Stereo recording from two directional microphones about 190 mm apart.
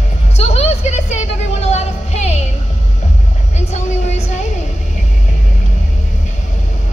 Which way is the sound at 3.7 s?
35° left (ahead or behind).